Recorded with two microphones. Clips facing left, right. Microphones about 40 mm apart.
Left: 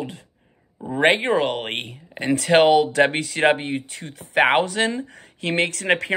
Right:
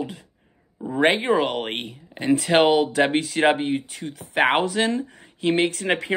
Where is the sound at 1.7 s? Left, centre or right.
Centre.